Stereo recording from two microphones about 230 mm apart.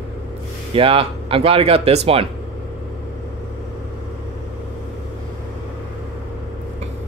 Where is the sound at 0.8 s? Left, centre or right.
Right.